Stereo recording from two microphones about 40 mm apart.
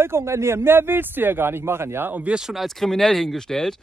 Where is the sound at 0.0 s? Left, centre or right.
Right.